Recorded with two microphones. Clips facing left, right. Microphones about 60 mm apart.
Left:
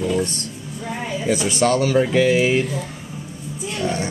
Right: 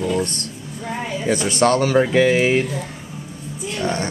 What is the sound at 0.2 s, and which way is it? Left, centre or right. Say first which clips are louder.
Music: even; right.